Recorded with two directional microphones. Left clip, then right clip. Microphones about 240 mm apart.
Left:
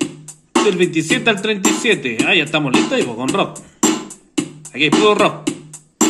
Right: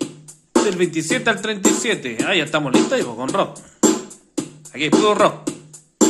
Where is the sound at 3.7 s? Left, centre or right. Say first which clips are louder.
Even; left.